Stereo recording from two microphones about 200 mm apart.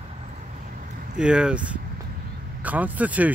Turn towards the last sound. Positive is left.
turn(degrees=-5)  # may be behind; listen again after turning